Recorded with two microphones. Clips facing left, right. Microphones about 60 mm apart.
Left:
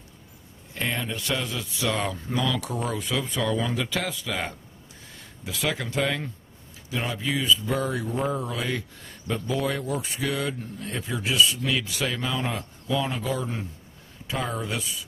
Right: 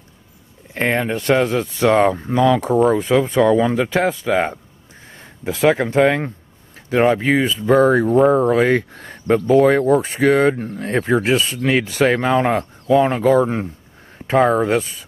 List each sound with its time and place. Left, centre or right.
0.7 s speech: right